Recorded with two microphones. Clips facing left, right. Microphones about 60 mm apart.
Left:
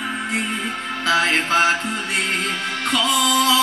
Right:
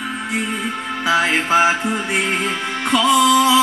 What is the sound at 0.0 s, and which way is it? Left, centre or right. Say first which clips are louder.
Music: right 1 dB; centre.